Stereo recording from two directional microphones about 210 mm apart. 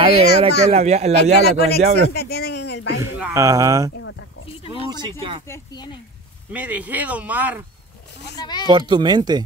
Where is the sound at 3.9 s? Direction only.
65° left (ahead or behind).